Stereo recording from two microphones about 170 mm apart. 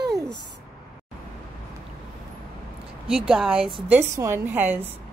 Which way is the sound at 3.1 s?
5° right (ahead or behind).